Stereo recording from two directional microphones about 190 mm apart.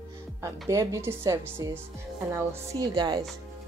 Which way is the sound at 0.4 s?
15° right (ahead or behind).